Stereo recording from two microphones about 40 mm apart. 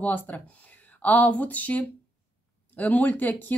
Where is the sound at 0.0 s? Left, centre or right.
Left.